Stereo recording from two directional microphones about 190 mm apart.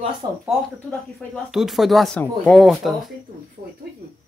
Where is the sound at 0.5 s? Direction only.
Centre (ahead or behind).